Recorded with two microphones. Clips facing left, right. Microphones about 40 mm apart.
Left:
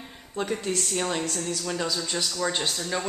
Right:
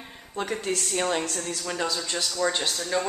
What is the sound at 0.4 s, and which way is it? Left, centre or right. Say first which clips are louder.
Speech: even; centre.